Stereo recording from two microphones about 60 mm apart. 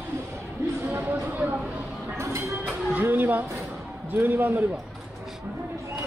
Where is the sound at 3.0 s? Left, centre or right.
Right.